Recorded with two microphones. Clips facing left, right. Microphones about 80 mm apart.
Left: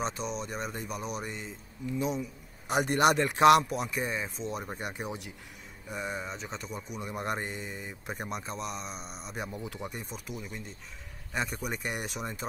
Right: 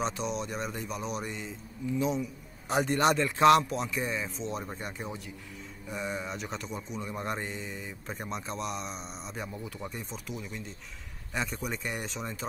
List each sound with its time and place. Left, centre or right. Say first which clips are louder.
0.0 s speech: right 2 dB; centre
2.9 s speech: left 2 dB; left
3.2 s speech: even; centre
3.6 s speech: even; centre
5.9 s speech: right 1 dB; centre
10.1 s speech: right 1 dB; centre